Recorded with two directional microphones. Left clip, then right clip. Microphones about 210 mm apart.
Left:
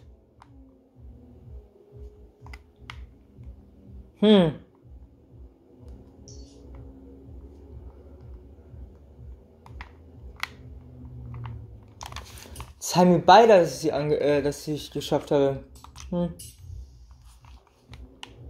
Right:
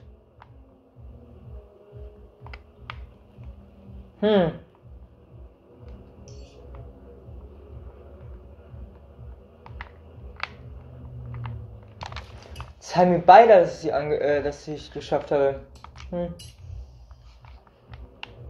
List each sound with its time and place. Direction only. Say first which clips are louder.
4.2 s speech: left 1 dB; 55° left (ahead or behind)
12.8 s speech: right 2 dB; 55° left (ahead or behind)